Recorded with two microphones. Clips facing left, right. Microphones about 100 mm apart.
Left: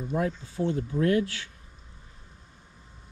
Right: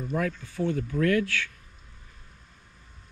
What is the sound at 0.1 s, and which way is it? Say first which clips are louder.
Speech: left 1 dB; 25° left (ahead or behind).